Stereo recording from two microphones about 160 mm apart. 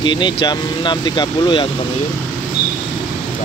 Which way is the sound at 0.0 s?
30° left (ahead or behind).